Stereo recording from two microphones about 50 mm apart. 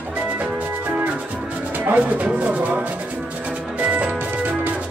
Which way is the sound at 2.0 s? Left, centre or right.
Right.